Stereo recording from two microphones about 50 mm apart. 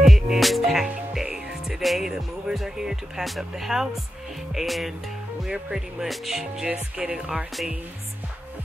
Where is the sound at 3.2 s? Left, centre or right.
Centre.